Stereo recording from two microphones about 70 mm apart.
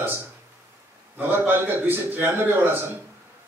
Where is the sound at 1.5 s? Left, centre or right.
Right.